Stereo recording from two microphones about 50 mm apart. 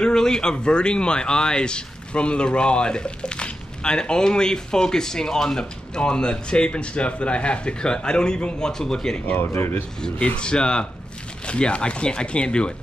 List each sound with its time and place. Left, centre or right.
0.0 s speech: centre
9.4 s speech: left
10.0 s speech: left